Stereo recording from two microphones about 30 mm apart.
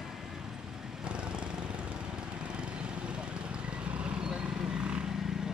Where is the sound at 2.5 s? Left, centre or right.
Right.